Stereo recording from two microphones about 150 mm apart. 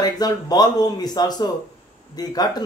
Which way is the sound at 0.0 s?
25° left (ahead or behind).